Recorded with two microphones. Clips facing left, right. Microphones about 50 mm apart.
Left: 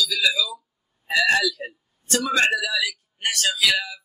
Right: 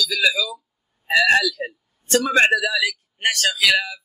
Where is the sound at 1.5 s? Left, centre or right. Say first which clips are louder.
Right 5 dB; right.